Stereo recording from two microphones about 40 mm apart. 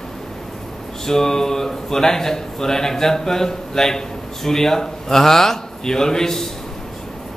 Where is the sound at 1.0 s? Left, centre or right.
Centre.